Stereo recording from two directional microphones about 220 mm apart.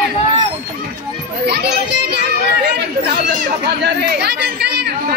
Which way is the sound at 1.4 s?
50° right (ahead or behind).